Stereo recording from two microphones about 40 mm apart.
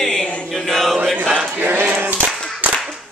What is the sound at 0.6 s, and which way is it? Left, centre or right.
Chant, centre.